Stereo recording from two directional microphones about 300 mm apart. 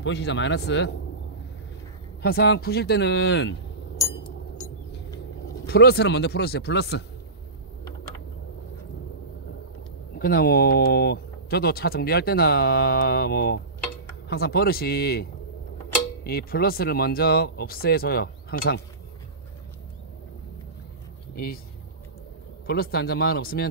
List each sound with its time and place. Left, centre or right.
0.0 s speech: left
2.2 s speech: left
4.0 s a sound: centre
5.7 s speech: left
10.1 s speech: left
16.3 s speech: left
22.7 s speech: left